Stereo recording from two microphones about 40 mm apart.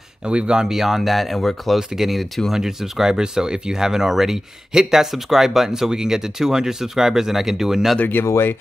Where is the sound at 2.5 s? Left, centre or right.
Centre.